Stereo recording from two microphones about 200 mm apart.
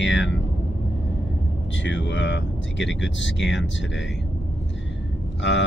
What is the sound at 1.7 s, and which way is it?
Speech, 65° left (ahead or behind).